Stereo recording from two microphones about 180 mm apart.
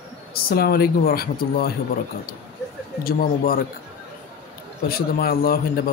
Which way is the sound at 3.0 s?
55° left (ahead or behind).